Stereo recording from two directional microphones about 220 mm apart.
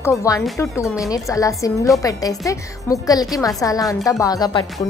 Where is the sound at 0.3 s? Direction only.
15° left (ahead or behind).